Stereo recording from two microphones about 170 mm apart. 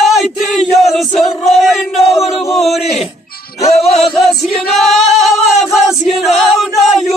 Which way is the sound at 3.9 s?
Centre (ahead or behind).